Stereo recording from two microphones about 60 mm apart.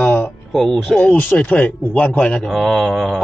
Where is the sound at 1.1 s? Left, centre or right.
Left.